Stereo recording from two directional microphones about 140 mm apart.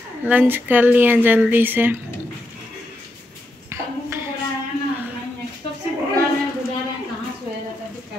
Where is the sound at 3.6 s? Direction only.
15° right (ahead or behind).